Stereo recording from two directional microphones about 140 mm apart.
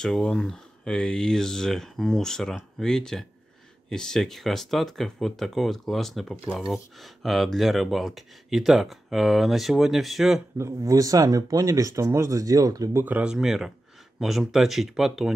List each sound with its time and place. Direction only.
0.0 s speech: 5° left (ahead or behind)
10.6 s speech: 25° right (ahead or behind)
13.0 s speech: 10° right (ahead or behind)